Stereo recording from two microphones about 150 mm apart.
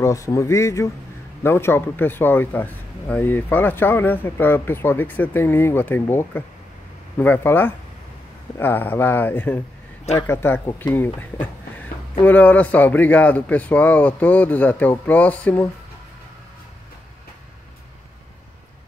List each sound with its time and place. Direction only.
0.0 s a man's voice: 20° left (ahead or behind)